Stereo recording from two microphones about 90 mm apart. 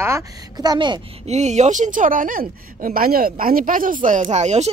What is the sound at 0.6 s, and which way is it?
Speech, 55° right (ahead or behind).